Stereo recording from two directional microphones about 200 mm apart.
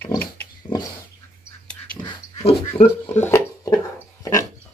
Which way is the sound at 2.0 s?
25° left (ahead or behind).